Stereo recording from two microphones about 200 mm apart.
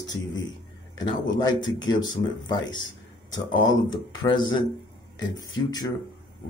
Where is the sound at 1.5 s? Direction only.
70° left (ahead or behind).